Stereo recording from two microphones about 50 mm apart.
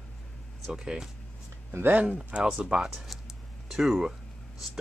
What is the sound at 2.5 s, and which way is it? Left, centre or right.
Speech, centre.